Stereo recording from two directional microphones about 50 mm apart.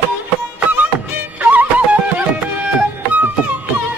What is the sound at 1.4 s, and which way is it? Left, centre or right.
Music, right.